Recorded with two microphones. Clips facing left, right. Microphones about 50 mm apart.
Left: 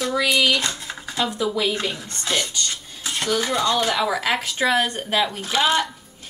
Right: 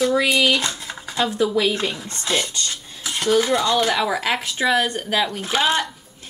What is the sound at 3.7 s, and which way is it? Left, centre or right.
Speech, centre.